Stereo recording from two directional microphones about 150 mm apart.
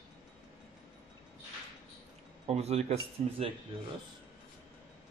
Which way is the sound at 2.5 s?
45° right (ahead or behind).